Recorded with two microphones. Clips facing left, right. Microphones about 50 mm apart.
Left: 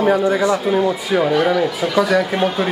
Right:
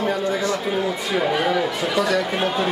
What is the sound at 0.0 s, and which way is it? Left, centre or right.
Speech, centre.